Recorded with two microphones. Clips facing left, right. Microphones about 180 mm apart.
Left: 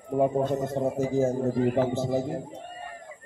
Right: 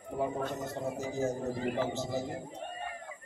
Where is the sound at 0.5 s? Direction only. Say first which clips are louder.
Left 9 dB; 55° left (ahead or behind).